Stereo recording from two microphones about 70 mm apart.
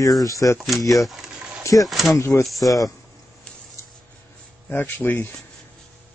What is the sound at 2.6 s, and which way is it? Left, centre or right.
Speech, left.